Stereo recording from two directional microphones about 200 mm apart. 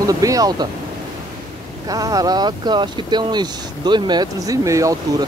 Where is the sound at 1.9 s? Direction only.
20° right (ahead or behind).